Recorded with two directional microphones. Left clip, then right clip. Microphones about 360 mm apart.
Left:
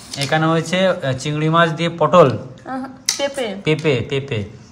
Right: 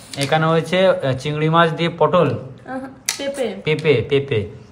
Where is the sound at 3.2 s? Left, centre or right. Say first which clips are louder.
Left 1 dB; left.